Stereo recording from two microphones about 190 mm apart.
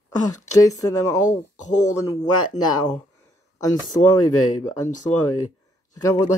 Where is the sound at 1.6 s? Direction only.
40° left (ahead or behind).